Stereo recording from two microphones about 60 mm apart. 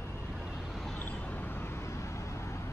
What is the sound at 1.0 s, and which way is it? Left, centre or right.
Vehicle, left.